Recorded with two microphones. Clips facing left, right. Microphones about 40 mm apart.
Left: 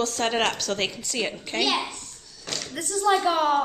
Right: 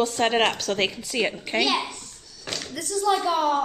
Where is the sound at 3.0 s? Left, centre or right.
Left.